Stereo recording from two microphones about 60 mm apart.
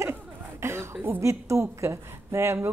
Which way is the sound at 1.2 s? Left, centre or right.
Right.